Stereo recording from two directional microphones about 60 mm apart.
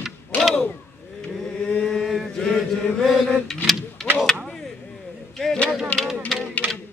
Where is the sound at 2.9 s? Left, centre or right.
Centre.